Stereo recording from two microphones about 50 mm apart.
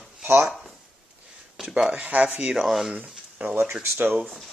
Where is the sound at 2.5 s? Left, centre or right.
Centre.